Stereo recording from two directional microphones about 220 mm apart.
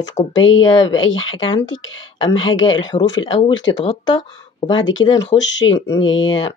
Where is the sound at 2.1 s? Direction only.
20° left (ahead or behind).